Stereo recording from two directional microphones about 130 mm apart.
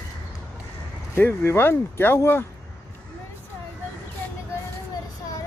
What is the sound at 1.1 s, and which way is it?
Speech, 20° left (ahead or behind).